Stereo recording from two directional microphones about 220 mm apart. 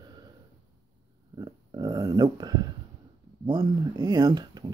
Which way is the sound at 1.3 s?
20° right (ahead or behind).